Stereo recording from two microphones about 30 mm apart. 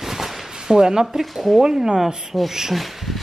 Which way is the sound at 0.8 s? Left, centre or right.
Right.